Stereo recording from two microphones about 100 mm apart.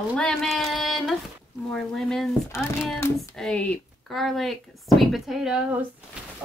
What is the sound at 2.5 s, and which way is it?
Speech, 25° left (ahead or behind).